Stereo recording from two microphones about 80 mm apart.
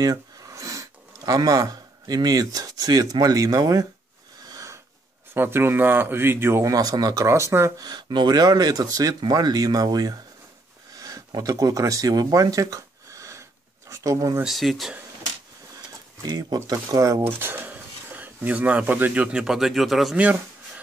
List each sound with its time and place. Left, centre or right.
0.0 s speech: right
4.5 s a sound: right
5.3 s speech: right
6.6 s speech: right
7.2 s speech: right
7.8 s speech: right
14.4 s speech: centre
16.2 s speech: right
17.4 s speech: right; by 20.2 s centre
20.2 s a sound: centre